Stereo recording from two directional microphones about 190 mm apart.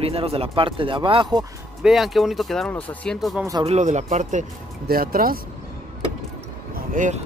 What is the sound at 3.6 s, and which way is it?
Speech, 35° right (ahead or behind).